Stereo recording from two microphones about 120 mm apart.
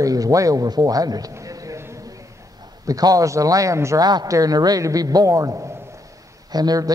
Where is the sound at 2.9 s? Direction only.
30° right (ahead or behind).